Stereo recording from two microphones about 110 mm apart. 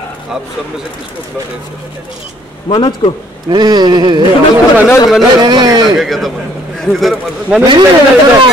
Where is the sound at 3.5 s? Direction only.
40° right (ahead or behind).